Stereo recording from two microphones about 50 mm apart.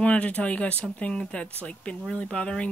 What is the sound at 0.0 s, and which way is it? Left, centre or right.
Speech, left.